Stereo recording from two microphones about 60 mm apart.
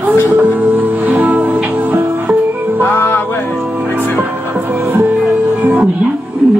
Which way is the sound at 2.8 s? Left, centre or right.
Left.